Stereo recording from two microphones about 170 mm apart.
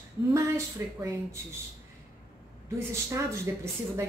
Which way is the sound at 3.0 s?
15° right (ahead or behind).